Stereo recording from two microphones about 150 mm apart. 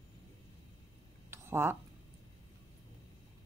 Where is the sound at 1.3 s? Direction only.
15° right (ahead or behind).